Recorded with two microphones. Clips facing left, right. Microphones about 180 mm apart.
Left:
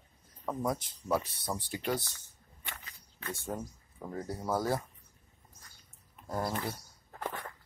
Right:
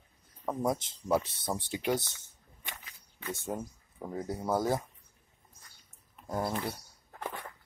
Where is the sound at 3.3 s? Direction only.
20° right (ahead or behind).